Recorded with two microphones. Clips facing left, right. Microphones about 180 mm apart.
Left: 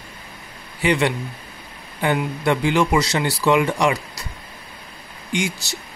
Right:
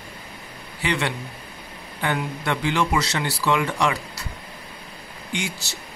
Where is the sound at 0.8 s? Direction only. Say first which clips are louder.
Left 6 dB; 15° left (ahead or behind).